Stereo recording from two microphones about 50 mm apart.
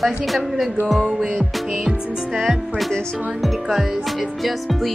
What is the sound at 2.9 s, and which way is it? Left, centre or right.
Speech, centre.